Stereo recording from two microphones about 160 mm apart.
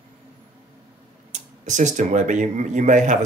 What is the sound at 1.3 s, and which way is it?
Speech, 50° right (ahead or behind).